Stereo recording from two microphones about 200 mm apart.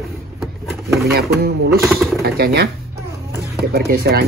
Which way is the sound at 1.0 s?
50° right (ahead or behind).